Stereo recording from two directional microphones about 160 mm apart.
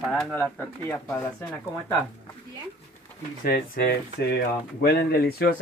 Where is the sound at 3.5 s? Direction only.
75° left (ahead or behind).